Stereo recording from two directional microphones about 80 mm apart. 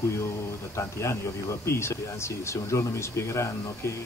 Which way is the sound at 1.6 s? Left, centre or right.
Left.